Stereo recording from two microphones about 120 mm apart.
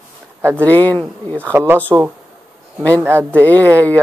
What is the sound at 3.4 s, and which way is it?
Speech, 15° left (ahead or behind).